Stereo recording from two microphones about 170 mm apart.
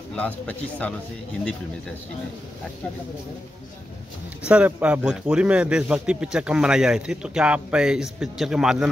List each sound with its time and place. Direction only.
0.1 s speech: 10° left (ahead or behind)
4.5 s speech: 10° right (ahead or behind)